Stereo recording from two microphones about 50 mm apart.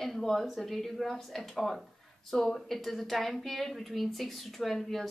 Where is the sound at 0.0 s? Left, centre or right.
Centre.